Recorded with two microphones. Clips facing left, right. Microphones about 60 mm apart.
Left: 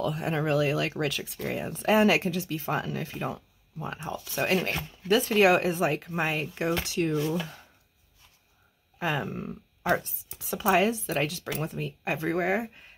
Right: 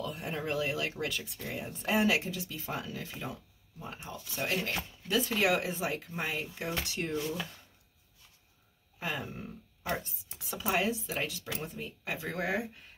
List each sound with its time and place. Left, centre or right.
0.0 s speech: left
3.7 s speech: left
4.6 s speech: left
8.9 s speech: left
11.6 s speech: left
12.3 s speech: left